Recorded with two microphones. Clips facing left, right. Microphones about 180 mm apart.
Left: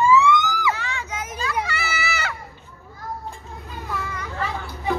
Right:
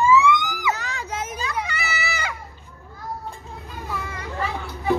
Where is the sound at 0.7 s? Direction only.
40° right (ahead or behind); by 2.3 s 20° right (ahead or behind).